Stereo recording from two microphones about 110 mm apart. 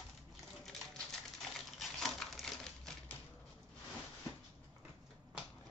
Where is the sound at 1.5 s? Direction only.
Centre (ahead or behind).